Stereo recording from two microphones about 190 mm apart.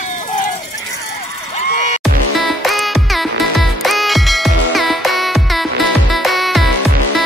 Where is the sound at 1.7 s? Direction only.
40° left (ahead or behind).